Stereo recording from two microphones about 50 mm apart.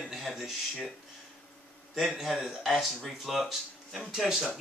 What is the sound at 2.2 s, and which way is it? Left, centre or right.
Speech, centre.